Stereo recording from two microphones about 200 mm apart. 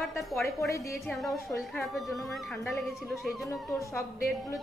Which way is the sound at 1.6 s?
Centre (ahead or behind).